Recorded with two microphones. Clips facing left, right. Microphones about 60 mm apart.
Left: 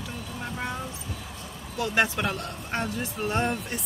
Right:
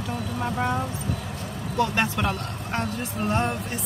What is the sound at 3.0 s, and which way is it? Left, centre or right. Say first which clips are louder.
Speech: right 2 dB; right.